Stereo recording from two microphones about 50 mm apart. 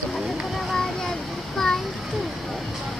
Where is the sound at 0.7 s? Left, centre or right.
Centre.